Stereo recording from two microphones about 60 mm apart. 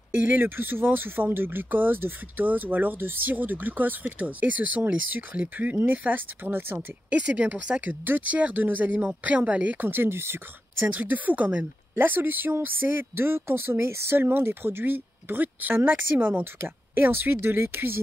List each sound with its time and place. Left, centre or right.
0.2 s speech: right
7.1 s speech: right
11.9 s speech: right